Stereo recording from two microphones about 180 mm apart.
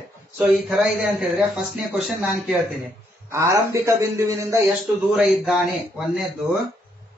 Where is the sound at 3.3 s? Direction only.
15° right (ahead or behind).